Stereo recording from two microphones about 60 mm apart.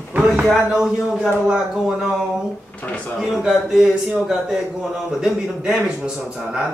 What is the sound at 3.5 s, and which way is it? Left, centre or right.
A man's voice, centre.